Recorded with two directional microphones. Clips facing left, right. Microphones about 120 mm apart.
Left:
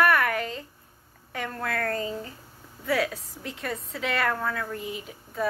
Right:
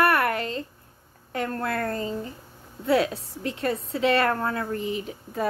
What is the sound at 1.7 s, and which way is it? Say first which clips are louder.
Speech: right 1 dB; 25° right (ahead or behind).